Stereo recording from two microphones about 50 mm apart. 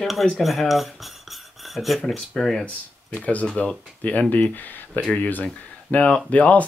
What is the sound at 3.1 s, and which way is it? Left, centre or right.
Speech, left.